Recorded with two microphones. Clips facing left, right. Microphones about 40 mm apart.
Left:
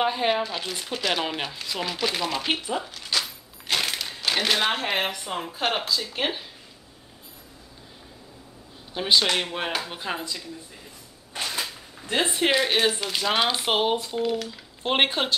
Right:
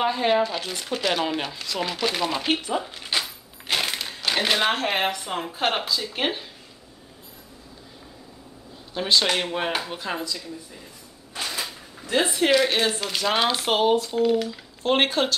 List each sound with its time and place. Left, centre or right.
0.0 s speech: centre
2.9 s a sound: right
3.7 s a sound: centre
4.4 s speech: centre
8.9 s speech: centre
9.2 s speech: centre
11.4 s a sound: centre
12.1 s speech: left
12.5 s speech: centre
14.2 s speech: centre
14.8 s speech: left